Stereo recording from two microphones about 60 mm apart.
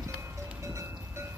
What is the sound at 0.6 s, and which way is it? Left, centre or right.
Cowbell, right.